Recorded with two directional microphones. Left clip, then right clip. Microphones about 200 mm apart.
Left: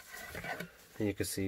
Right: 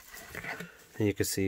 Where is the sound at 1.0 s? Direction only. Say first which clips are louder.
Right 6 dB; 40° right (ahead or behind).